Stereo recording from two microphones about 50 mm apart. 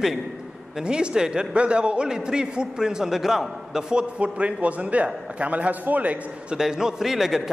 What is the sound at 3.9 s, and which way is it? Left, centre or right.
A man's voice, right.